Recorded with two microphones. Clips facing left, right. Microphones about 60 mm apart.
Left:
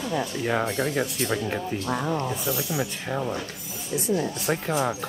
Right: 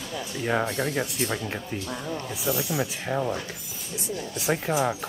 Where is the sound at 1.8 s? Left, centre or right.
Left.